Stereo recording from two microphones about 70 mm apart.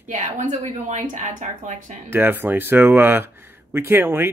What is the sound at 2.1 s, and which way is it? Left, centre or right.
Speech, right.